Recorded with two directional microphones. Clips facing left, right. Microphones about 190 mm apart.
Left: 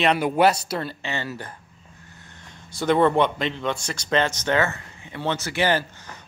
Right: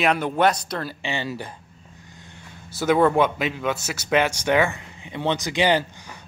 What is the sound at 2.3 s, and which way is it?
A man's voice, 5° right (ahead or behind).